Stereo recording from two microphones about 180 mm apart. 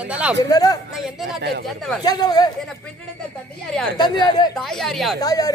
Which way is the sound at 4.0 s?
25° left (ahead or behind).